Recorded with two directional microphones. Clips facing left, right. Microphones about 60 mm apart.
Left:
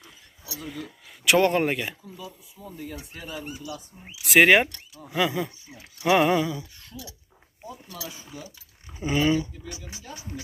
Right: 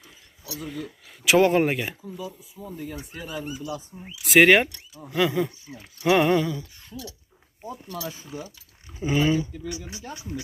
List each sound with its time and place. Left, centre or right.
0.6 s speech: centre
6.9 s speech: centre
8.1 s speech: right
9.0 s speech: centre